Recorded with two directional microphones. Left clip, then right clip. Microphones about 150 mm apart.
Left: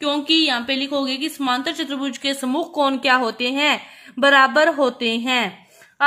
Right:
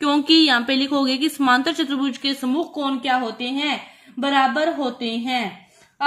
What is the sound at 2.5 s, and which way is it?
Speech, 25° left (ahead or behind).